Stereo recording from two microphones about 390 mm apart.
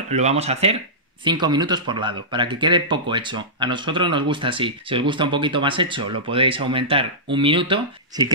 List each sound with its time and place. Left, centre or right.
0.1 s speech: centre